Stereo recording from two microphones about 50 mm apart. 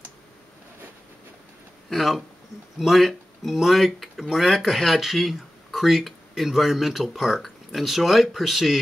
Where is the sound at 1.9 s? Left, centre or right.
Centre.